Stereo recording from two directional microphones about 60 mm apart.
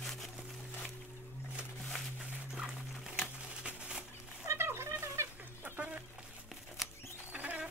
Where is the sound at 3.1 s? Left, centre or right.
Centre.